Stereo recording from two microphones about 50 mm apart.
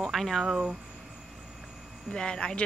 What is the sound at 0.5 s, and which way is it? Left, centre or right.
Speech, centre.